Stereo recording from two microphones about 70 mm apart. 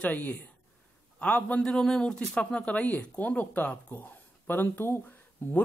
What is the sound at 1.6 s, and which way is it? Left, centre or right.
Speech, centre.